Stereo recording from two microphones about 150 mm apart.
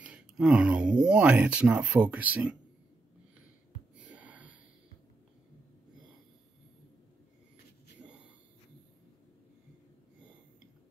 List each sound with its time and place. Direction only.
0.0 s speech: 5° right (ahead or behind)
3.9 s wheeze: 10° right (ahead or behind)